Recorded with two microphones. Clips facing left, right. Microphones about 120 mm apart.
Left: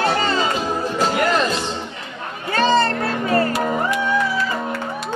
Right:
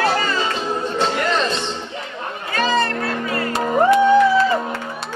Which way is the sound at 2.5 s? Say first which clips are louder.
Left 3 dB; 30° left (ahead or behind).